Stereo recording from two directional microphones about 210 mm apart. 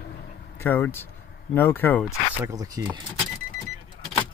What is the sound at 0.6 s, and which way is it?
Speech, 10° left (ahead or behind).